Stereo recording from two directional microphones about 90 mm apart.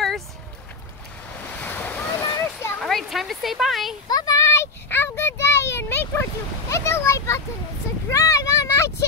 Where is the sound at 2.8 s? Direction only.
Centre (ahead or behind).